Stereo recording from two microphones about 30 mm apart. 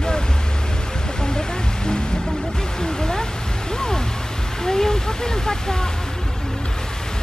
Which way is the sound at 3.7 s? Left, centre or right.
Left.